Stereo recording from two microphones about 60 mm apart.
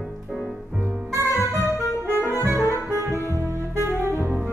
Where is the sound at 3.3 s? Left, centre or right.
Right.